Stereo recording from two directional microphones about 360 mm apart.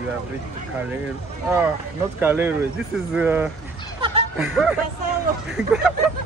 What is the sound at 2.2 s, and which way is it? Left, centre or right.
Speech, centre.